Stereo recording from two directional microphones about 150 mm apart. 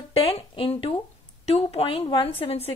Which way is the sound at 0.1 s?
40° left (ahead or behind).